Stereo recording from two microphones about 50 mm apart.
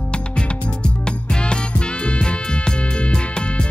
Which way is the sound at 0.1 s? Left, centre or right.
Centre.